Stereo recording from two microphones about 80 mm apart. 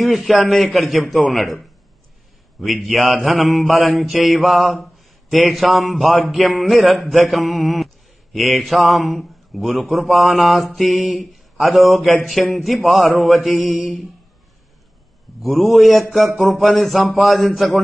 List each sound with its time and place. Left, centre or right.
0.0 s mantra: centre
15.4 s mantra: centre